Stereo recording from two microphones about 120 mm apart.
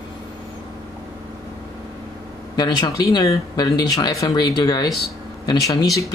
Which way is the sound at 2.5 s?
35° left (ahead or behind).